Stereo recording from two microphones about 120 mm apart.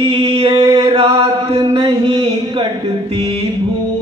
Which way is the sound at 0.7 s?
50° right (ahead or behind).